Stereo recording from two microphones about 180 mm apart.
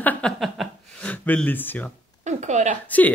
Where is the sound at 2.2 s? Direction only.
40° right (ahead or behind).